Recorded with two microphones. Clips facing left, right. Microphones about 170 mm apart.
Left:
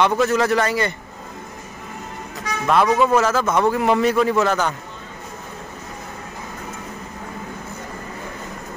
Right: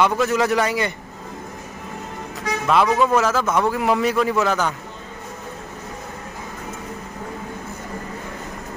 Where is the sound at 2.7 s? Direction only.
Centre (ahead or behind).